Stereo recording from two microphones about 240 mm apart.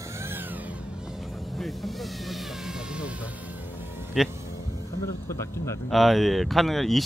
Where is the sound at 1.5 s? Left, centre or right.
Centre.